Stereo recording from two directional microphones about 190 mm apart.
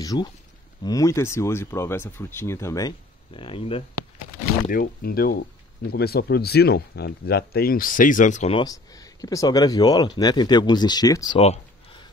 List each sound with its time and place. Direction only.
0.0 s speech: 20° left (ahead or behind)
3.3 s speech: 30° left (ahead or behind)
4.6 s speech: 50° left (ahead or behind)
8.5 s speech: 20° left (ahead or behind)
11.3 s speech: 35° left (ahead or behind)